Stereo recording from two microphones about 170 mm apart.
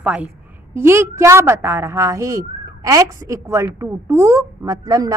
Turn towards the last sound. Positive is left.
turn(degrees=-20)  # may be behind; listen again after turning